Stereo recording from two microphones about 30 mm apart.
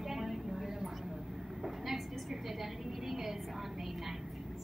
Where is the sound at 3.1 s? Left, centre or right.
Centre.